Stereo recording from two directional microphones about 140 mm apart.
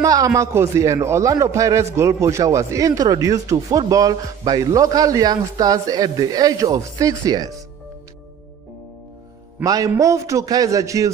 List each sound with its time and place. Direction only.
0.0 s a man's voice: 25° right (ahead or behind)
9.6 s a man's voice: 25° right (ahead or behind)